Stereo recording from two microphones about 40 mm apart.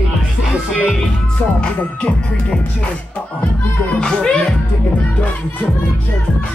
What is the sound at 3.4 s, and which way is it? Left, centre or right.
Speech, left.